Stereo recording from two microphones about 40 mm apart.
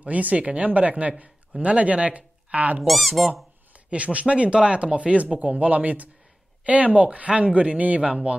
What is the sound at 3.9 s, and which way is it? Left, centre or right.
Speech, right.